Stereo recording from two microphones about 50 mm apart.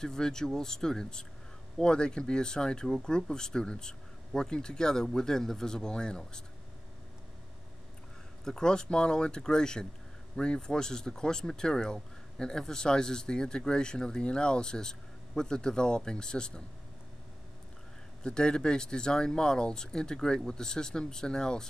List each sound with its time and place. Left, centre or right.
0.0 s speech: centre
8.5 s speech: centre
18.2 s speech: centre